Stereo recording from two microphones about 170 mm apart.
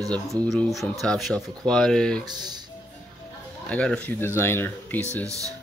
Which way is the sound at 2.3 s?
25° right (ahead or behind).